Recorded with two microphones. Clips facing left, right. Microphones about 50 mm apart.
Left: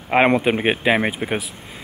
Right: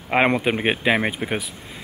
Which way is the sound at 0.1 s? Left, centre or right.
Centre.